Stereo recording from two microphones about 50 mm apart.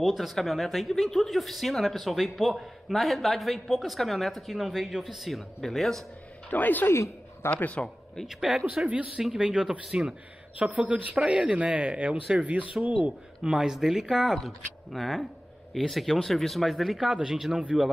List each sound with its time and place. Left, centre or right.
0.0 s speech: centre
6.5 s speech: left
7.5 s speech: left
8.3 s speech: centre
8.8 s speech: right
9.4 s speech: centre
10.6 s speech: right
13.4 s speech: centre
14.4 s speech: centre